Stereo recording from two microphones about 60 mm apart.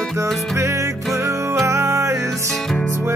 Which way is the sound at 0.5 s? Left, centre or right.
Right.